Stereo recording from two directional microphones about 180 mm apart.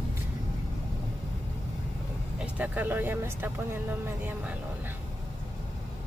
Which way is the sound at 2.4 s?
10° right (ahead or behind).